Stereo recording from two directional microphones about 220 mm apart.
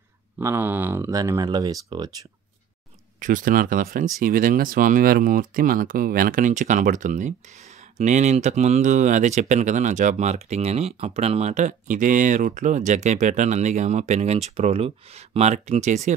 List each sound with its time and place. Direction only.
0.4 s speech: 10° right (ahead or behind)
3.2 s speech: 35° right (ahead or behind)